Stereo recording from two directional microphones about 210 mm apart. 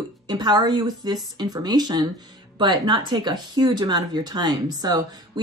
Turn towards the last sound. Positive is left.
turn(degrees=-20)  # may be behind; listen again after turning